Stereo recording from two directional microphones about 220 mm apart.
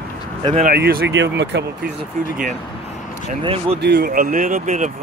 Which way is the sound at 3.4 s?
25° right (ahead or behind).